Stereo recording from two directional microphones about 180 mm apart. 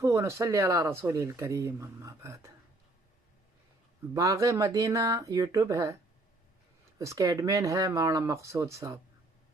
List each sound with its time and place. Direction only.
0.0 s speech: 15° right (ahead or behind)
4.1 s speech: 20° right (ahead or behind)
7.0 s speech: 15° right (ahead or behind)